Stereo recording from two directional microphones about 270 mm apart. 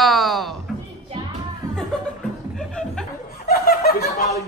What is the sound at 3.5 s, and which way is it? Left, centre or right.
Snicker, left.